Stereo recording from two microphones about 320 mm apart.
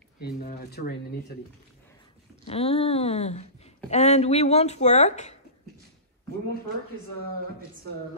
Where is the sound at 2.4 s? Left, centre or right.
Centre.